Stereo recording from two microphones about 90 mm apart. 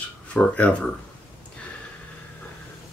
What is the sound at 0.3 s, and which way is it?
Speech, 15° left (ahead or behind).